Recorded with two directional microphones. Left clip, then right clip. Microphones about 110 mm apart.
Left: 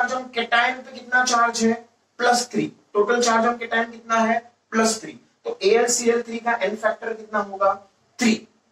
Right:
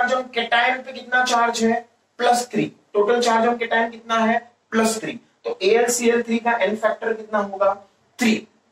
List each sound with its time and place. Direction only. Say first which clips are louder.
0.1 s speech: right 2 dB; 30° right (ahead or behind)